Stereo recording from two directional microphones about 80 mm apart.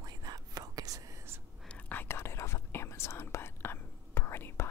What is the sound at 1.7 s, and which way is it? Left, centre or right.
Whispering, left.